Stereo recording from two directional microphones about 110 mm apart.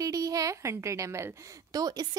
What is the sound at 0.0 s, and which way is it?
A woman's voice, 35° right (ahead or behind).